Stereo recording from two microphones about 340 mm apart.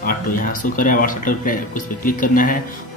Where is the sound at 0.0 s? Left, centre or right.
Left.